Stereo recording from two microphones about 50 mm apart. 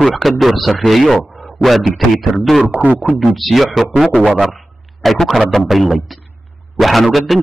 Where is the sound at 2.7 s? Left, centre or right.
Right.